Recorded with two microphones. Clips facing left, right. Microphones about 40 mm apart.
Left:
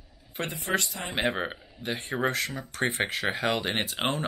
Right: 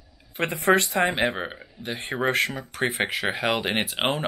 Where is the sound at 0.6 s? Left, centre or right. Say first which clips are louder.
Right 11 dB; right.